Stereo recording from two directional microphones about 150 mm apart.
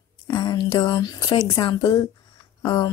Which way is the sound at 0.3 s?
30° left (ahead or behind).